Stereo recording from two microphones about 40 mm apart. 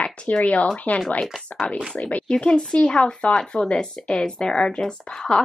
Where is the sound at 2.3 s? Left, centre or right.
Left.